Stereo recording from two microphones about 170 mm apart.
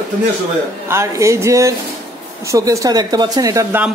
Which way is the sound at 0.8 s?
15° right (ahead or behind).